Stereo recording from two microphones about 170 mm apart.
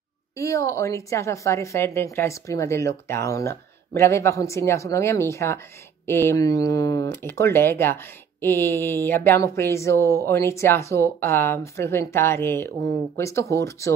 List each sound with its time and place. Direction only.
0.4 s speech: 20° left (ahead or behind)